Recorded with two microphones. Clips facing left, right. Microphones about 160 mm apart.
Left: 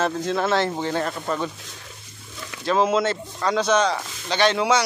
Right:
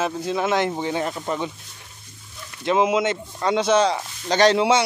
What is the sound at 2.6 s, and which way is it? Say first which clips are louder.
Speech: right 1 dB; 15° right (ahead or behind).